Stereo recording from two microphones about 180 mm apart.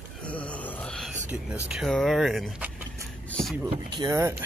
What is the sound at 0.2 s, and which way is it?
Groan, 10° left (ahead or behind).